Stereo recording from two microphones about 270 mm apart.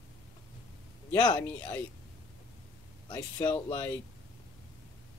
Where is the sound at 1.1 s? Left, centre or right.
Centre.